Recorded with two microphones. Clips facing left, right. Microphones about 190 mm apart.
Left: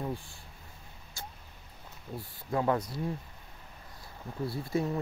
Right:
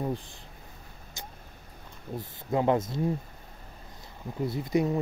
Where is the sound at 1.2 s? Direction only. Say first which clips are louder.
Even; 20° right (ahead or behind).